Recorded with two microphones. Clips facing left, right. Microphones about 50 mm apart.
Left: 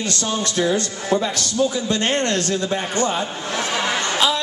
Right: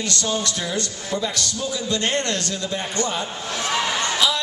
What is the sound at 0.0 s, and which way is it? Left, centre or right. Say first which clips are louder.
A man's voice: left 1 dB; left.